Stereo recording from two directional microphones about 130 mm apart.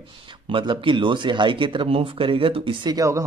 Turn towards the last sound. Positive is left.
turn(degrees=-25)  # may be behind; listen again after turning